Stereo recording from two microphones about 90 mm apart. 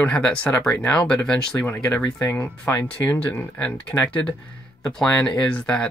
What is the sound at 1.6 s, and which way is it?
Speech, 25° left (ahead or behind).